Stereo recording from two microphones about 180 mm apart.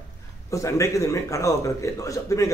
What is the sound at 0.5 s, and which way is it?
A man's voice, 15° left (ahead or behind).